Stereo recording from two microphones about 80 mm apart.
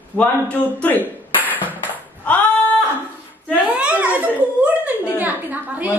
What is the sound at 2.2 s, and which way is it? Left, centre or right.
Female singing, left.